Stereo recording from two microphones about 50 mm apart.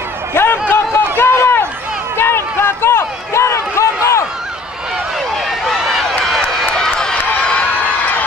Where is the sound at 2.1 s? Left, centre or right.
Left.